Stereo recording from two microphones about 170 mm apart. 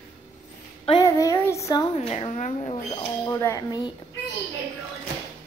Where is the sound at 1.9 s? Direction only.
40° left (ahead or behind).